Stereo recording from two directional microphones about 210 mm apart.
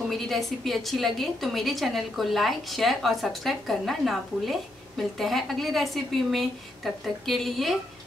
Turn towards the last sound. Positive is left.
turn(degrees=0)  # may be behind; listen again after turning